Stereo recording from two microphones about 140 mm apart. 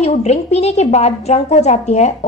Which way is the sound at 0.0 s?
50° left (ahead or behind).